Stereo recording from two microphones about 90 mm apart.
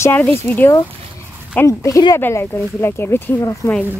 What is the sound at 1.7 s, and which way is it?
Speech, 35° left (ahead or behind).